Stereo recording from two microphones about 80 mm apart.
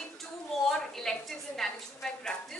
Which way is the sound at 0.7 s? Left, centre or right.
Centre.